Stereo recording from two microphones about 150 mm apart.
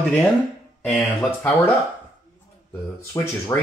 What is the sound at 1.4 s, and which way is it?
Speech, 15° left (ahead or behind).